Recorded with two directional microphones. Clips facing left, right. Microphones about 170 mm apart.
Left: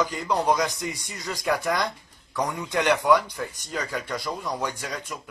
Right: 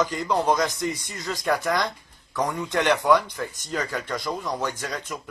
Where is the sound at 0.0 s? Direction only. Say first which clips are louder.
Right 1 dB; 10° left (ahead or behind).